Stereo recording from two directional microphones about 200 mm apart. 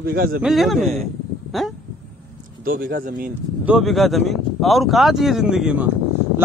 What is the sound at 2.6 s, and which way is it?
Speech, 45° right (ahead or behind).